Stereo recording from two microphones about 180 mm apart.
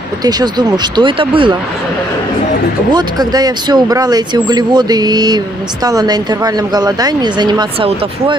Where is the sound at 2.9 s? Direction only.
20° right (ahead or behind).